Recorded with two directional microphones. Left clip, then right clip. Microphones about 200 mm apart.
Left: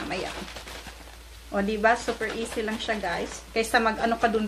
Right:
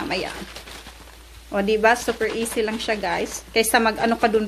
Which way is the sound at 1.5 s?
45° right (ahead or behind).